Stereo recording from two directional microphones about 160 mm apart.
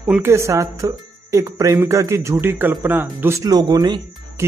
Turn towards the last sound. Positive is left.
turn(degrees=-30)  # may be behind; listen again after turning